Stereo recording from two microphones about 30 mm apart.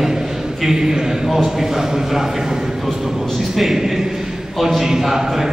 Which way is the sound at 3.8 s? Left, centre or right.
Centre.